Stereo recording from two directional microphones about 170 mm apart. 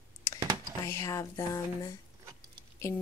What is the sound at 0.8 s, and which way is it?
Speech, 15° left (ahead or behind).